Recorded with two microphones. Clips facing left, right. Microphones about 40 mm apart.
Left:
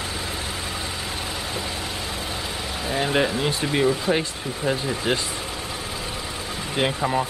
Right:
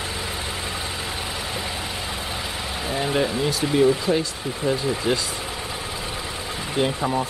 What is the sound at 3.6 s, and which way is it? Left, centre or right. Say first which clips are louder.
Speech: right 4 dB; centre.